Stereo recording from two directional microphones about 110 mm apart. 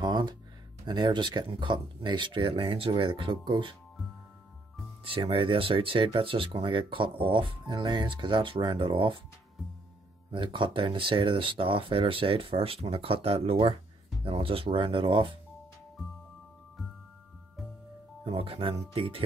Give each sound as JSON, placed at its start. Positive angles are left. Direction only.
{"t": 0.0, "sound": "a sound", "side_deg": -40}
{"t": 0.8, "sound": "speech", "side_deg": -40}
{"t": 5.0, "sound": "speech", "side_deg": -55}
{"t": 10.3, "sound": "speech", "side_deg": -50}
{"t": 18.2, "sound": "speech", "side_deg": -55}